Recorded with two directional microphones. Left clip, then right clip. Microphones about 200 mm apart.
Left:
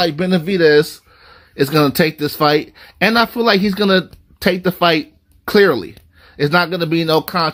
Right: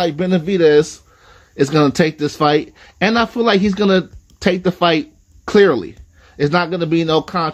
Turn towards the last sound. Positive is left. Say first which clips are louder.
# left 1 dB
turn(degrees=20)  # may be behind; listen again after turning